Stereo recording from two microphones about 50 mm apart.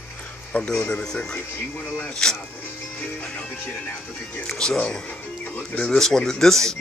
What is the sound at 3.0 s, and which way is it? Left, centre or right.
Music, left.